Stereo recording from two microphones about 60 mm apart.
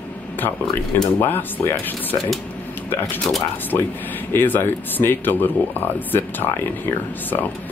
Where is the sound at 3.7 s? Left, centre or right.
Left.